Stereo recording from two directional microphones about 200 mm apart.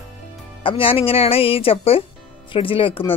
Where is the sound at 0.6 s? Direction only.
25° left (ahead or behind).